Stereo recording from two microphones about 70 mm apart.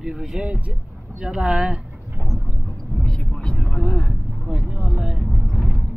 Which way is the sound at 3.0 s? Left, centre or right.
Centre.